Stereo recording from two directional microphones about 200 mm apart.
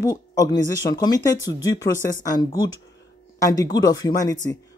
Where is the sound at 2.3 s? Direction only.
20° left (ahead or behind).